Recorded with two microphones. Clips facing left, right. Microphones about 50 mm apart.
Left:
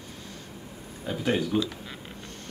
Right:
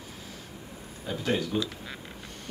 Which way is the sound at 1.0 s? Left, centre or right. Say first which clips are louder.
Left 2 dB; centre.